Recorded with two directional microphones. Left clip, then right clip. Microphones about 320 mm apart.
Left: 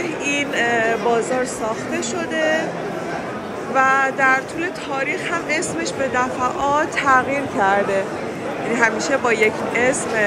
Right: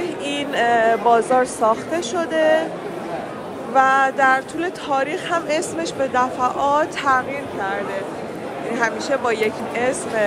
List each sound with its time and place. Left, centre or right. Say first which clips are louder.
0.6 s speech: right 4 dB; centre
2.3 s speech: right 3 dB; right
3.7 s speech: right 1 dB; centre
6.1 s speech: right 2 dB; centre